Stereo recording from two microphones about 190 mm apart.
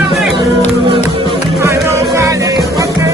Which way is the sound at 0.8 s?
30° right (ahead or behind).